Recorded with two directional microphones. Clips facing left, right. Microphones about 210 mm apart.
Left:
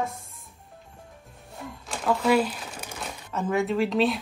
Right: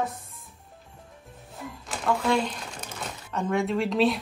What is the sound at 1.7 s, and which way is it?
Crumpling, centre (ahead or behind).